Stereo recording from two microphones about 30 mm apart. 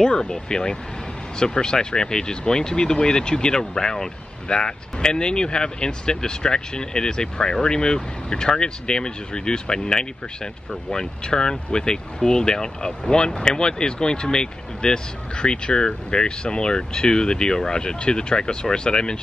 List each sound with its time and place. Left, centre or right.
0.1 s speech: left
4.5 s speech: left